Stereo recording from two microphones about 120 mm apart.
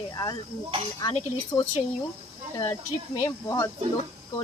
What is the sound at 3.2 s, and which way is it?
Speech, 25° left (ahead or behind).